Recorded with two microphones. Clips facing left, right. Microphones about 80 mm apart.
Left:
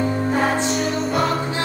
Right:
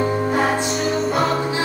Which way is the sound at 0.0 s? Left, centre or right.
Centre.